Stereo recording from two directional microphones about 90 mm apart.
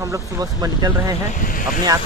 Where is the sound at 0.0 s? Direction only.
40° right (ahead or behind).